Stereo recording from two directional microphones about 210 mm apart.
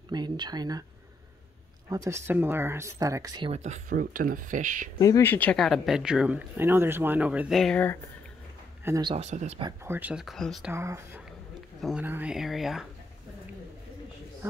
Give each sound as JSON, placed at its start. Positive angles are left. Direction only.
{"t": 0.1, "sound": "speech", "side_deg": -20}
{"t": 1.9, "sound": "speech", "side_deg": -15}
{"t": 4.9, "sound": "speech", "side_deg": 15}
{"t": 8.8, "sound": "speech", "side_deg": -15}
{"t": 9.1, "sound": "speech", "side_deg": -30}
{"t": 9.7, "sound": "speech", "side_deg": -10}
{"t": 10.7, "sound": "speech", "side_deg": -15}